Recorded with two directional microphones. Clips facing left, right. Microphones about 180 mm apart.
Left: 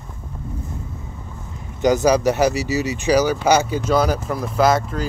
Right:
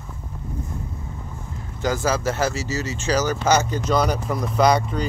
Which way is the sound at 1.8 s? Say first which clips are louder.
Left 7 dB; 20° left (ahead or behind).